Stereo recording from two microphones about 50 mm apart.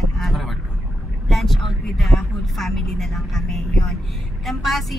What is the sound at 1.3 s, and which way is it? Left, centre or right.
A woman's voice, centre.